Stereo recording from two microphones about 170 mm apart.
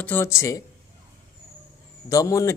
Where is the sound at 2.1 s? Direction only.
20° left (ahead or behind).